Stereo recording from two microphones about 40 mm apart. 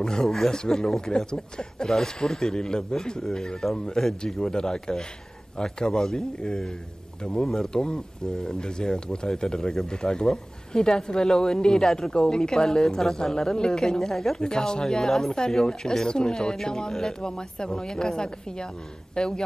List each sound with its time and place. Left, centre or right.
0.0 s speech: centre